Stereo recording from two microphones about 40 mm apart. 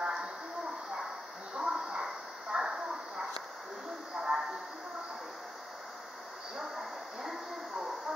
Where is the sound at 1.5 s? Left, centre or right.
Centre.